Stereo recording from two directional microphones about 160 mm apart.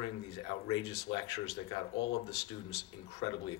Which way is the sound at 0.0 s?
30° left (ahead or behind).